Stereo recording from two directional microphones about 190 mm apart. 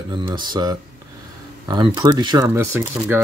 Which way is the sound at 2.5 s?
10° right (ahead or behind).